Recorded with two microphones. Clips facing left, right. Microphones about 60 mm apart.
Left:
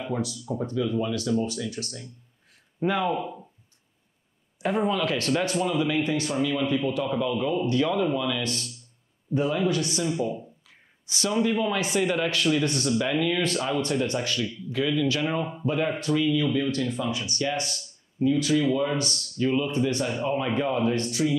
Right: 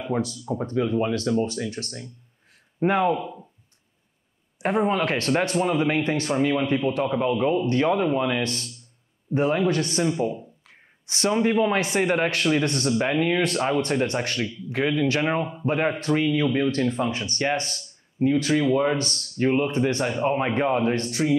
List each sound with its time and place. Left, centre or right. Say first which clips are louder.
0.1 s speech: right 5 dB; right
3.2 s speech: even; centre
4.6 s speech: right 2 dB; right